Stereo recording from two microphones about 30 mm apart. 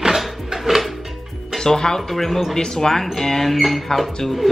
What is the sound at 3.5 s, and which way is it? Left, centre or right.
Speech, centre.